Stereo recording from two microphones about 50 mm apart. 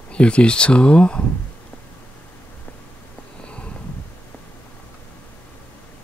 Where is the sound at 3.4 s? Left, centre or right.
Left.